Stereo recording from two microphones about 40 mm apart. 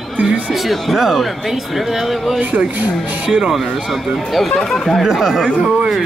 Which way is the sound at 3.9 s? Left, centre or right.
Centre.